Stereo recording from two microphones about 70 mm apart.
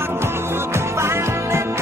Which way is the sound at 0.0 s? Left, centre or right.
Right.